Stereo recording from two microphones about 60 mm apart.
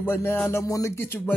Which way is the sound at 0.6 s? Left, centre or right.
Left.